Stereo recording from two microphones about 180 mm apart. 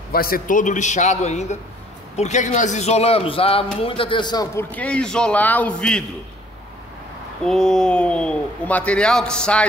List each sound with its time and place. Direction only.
0.1 s a man's voice: 55° left (ahead or behind); by 4.6 s 20° left (ahead or behind)
4.6 s a man's voice: 5° left (ahead or behind)
7.4 s speech: 5° left (ahead or behind)